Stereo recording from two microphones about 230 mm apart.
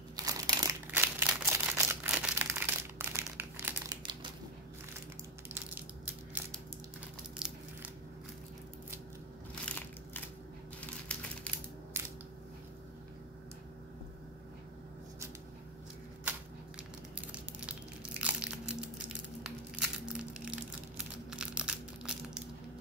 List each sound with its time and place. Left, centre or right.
0.1 s crumpling: centre
4.0 s crushing: right
7.3 s crumpling: centre
9.7 s crushing: centre
10.8 s a sound: centre
18.2 s crunch: centre
19.4 s a sound: centre
20.4 s crushing: centre